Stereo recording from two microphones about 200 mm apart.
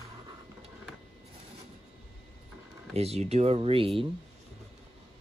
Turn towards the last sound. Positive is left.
turn(degrees=-25)  # may be behind; listen again after turning